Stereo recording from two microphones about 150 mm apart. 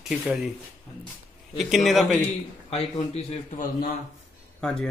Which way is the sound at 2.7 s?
45° left (ahead or behind).